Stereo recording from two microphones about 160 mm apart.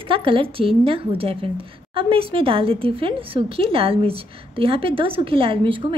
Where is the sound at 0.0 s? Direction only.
35° right (ahead or behind).